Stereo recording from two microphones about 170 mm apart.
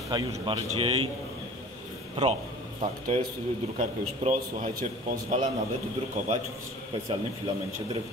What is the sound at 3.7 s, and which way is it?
A man's voice, 50° right (ahead or behind).